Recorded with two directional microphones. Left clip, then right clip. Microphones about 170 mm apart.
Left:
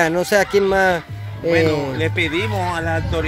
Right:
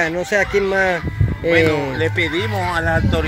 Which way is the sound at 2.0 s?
40° left (ahead or behind).